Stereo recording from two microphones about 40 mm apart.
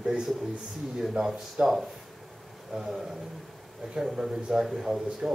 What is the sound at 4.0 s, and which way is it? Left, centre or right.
A man's voice, centre.